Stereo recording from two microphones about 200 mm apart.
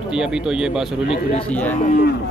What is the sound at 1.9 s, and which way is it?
Speech, 50° left (ahead or behind).